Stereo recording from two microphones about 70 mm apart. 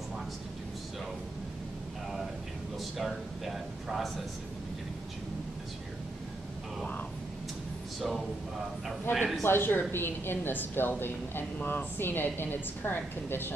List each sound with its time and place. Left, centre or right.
2.8 s speech: centre
8.0 s a sound: centre
9.4 s a woman's voice: left